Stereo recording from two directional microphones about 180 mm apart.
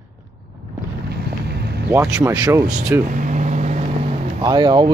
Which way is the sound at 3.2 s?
45° right (ahead or behind).